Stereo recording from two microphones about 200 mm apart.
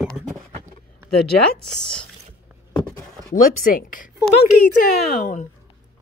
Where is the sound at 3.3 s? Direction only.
45° left (ahead or behind).